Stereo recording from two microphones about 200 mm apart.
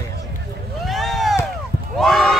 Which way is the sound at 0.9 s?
Centre (ahead or behind).